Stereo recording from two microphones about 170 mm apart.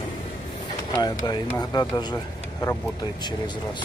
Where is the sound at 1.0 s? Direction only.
25° left (ahead or behind).